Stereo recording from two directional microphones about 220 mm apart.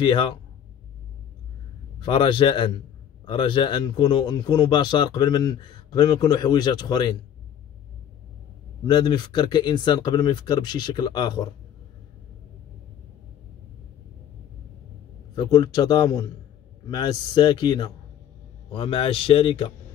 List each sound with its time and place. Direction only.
0.0 s a man's voice: 20° left (ahead or behind)
2.0 s a man's voice: 20° left (ahead or behind)
8.8 s a man's voice: 20° left (ahead or behind)
15.3 s a man's voice: 20° left (ahead or behind)